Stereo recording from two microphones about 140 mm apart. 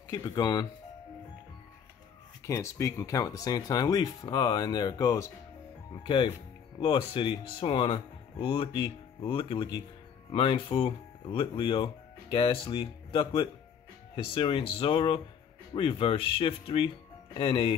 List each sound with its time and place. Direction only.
0.1 s speech: 30° left (ahead or behind)
2.4 s speech: 20° left (ahead or behind)
6.0 s speech: 35° left (ahead or behind)